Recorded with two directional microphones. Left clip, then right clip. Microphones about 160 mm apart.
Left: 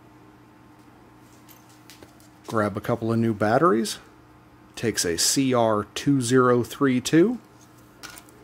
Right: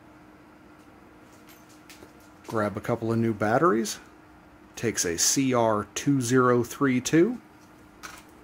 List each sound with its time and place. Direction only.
2.4 s speech: 35° left (ahead or behind)